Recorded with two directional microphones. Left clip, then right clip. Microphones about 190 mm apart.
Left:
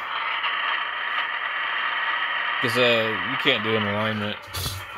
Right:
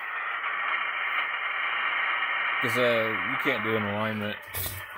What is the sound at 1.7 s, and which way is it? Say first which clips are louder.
Radio: left 2 dB; 15° left (ahead or behind).